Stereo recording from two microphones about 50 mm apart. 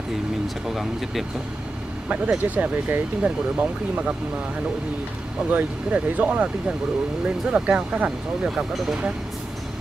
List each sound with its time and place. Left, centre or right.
0.7 s speech: centre
2.0 s speech: right
3.2 s speech: right
5.5 s speech: right